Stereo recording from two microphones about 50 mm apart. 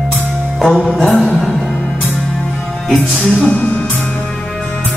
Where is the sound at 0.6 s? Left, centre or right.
Centre.